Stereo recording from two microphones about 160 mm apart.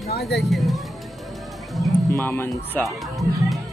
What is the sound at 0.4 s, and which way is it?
Speech, centre (ahead or behind).